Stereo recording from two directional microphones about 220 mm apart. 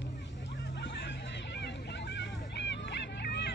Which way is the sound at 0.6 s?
50° left (ahead or behind).